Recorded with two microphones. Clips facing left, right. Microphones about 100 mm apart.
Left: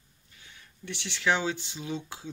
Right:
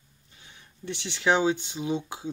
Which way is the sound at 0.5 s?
25° right (ahead or behind).